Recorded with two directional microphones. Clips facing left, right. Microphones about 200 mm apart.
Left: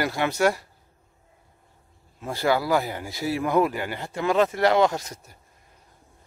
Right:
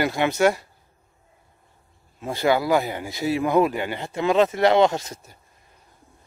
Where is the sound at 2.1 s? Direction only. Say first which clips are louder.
Right 2 dB; 20° right (ahead or behind).